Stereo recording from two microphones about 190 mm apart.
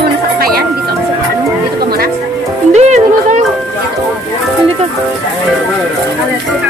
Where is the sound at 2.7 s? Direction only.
35° right (ahead or behind).